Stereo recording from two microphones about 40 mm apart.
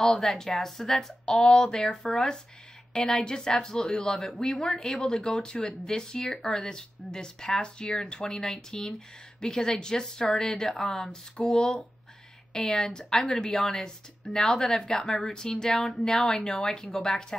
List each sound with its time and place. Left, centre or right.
0.0 s a woman's voice: centre
1.2 s a woman's voice: left
15.8 s speech: centre
16.5 s a woman's voice: centre